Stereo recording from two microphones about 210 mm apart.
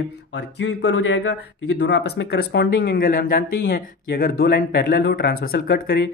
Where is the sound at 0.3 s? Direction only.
55° left (ahead or behind).